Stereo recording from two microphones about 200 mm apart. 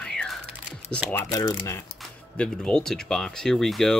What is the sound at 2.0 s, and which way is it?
Speech, 5° left (ahead or behind).